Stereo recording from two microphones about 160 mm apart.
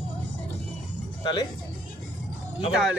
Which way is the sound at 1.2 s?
25° left (ahead or behind).